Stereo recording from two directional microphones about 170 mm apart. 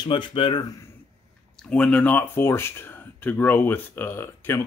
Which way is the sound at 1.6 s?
5° left (ahead or behind).